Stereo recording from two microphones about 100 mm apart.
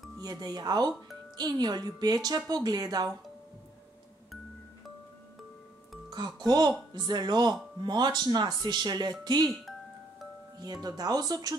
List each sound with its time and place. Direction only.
0.2 s speech: 40° right (ahead or behind)
6.0 s speech: 45° right (ahead or behind)
10.6 s speech: 40° right (ahead or behind)